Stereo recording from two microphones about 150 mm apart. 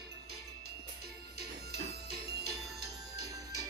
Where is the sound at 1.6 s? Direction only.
90° right.